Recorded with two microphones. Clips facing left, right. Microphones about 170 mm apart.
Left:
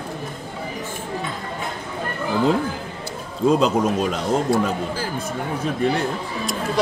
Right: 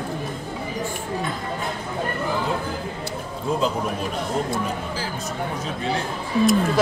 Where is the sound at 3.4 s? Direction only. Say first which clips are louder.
Left 7 dB; 80° left.